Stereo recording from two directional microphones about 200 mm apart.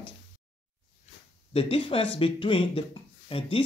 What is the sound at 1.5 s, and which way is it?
Speech, 30° left (ahead or behind).